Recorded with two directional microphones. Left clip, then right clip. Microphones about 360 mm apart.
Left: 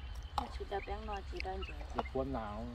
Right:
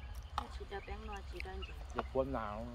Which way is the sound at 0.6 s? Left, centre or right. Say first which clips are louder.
Left 6 dB; centre.